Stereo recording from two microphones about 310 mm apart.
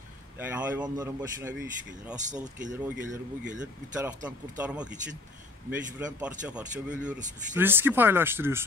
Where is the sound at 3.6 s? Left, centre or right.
Centre.